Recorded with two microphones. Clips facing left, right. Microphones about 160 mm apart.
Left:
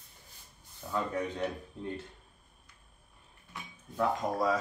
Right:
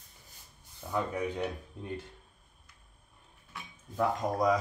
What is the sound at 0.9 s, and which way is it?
Speech, 15° right (ahead or behind).